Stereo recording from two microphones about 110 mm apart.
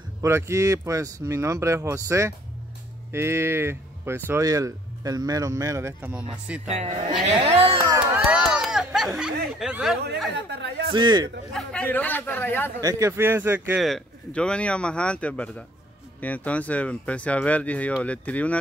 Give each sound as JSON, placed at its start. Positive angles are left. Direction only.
{"t": 0.2, "sound": "speech", "side_deg": -25}
{"t": 4.5, "sound": "speech", "side_deg": -30}
{"t": 6.7, "sound": "speech", "side_deg": -80}
{"t": 7.3, "sound": "speech", "side_deg": -55}
{"t": 7.8, "sound": "a sound", "side_deg": -25}
{"t": 8.2, "sound": "a sound", "side_deg": -5}
{"t": 10.9, "sound": "a man's voice", "side_deg": -40}
{"t": 11.5, "sound": "speech", "side_deg": 10}
{"t": 12.8, "sound": "speech", "side_deg": -25}
{"t": 13.7, "sound": "speech", "side_deg": 0}